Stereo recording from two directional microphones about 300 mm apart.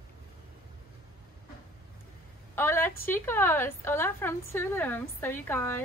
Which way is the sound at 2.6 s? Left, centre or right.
Centre.